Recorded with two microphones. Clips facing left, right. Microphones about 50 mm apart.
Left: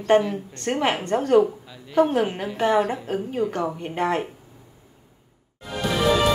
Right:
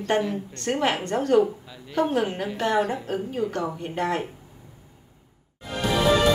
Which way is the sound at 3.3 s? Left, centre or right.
Centre.